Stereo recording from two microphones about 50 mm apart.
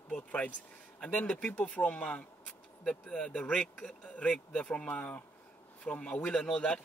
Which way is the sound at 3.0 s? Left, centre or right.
Centre.